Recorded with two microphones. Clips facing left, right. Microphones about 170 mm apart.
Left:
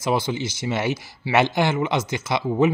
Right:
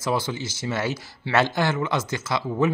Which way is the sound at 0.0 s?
15° left (ahead or behind).